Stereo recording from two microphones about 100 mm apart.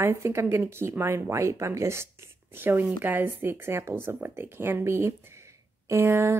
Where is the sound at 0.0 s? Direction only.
25° right (ahead or behind).